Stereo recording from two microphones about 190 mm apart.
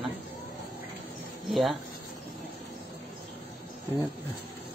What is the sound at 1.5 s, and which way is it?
Speech, centre (ahead or behind).